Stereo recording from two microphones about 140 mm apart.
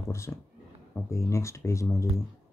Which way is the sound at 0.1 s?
20° left (ahead or behind).